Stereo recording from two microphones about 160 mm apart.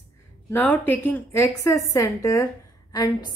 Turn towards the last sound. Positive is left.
turn(degrees=25)  # may be behind; listen again after turning